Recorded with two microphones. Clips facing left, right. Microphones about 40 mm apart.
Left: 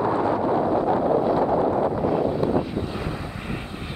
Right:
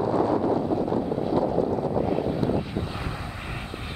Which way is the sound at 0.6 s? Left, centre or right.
Left.